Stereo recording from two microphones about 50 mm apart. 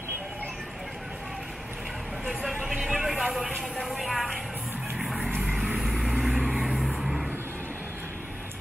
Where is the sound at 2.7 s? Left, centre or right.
Centre.